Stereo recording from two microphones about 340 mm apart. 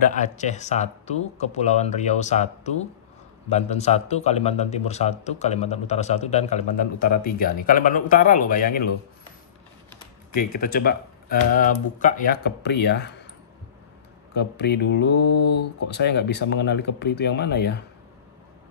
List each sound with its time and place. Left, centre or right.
0.1 s a man's voice: left
10.3 s a man's voice: left
14.3 s a man's voice: left